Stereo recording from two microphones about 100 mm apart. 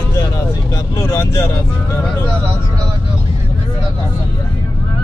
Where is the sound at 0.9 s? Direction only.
30° left (ahead or behind).